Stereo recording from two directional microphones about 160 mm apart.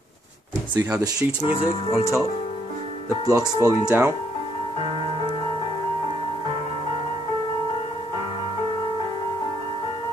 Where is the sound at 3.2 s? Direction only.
20° right (ahead or behind).